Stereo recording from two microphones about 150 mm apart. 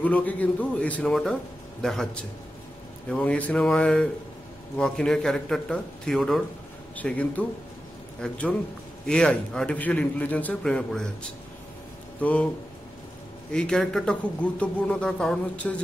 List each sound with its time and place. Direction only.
0.0 s a man's voice: 10° left (ahead or behind)
3.1 s a man's voice: 5° left (ahead or behind)
12.2 s a man's voice: 10° left (ahead or behind)
13.5 s a man's voice: 5° left (ahead or behind)